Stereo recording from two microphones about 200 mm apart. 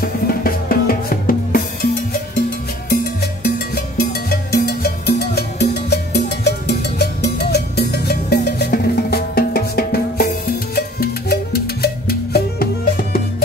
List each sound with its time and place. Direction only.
0.0 s drum: 45° left (ahead or behind)
2.9 s music: 50° left (ahead or behind)